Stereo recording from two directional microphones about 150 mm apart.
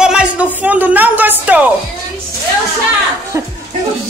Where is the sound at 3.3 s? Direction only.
20° right (ahead or behind).